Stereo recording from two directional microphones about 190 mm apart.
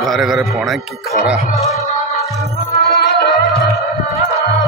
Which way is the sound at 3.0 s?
60° left (ahead or behind).